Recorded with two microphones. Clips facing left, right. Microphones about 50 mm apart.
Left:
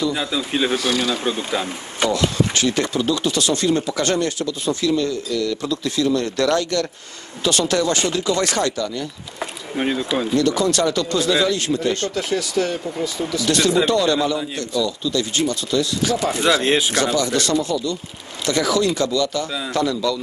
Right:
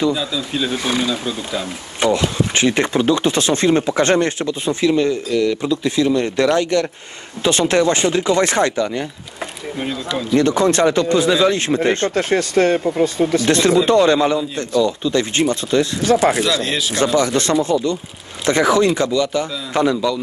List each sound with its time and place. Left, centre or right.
0.1 s speech: left
0.7 s speech: right
10.3 s speech: right
16.2 s speech: right
16.4 s speech: left
17.0 s speech: right